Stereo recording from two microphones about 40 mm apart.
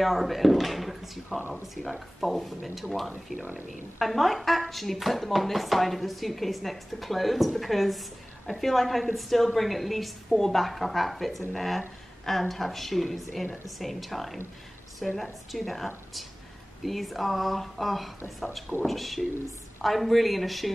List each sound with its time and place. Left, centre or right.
0.0 s speech: centre
3.3 s speech: right
4.0 s speech: centre